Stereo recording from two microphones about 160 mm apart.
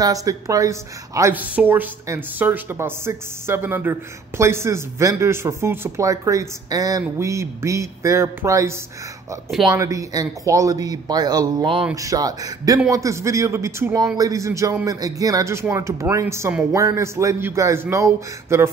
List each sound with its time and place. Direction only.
0.0 s a woman's voice: 20° right (ahead or behind)